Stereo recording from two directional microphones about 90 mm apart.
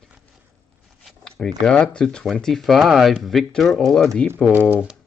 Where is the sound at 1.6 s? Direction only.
10° left (ahead or behind).